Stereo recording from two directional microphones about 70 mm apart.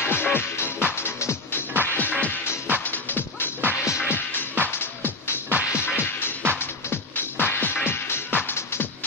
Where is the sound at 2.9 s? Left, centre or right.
Left.